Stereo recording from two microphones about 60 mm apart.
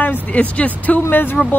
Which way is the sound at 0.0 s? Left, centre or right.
Left.